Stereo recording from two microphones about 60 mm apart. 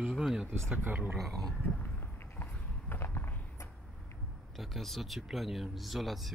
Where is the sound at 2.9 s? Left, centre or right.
Left.